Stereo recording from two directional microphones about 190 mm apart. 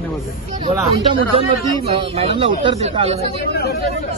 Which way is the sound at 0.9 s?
30° right (ahead or behind).